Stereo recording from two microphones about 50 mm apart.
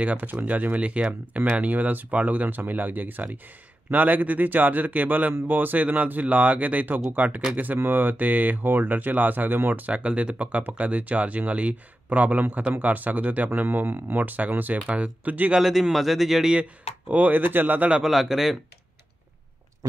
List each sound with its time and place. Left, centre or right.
0.0 s speech: right
9.9 s speech: right
15.6 s speech: centre
17.1 s speech: right
18.0 s speech: centre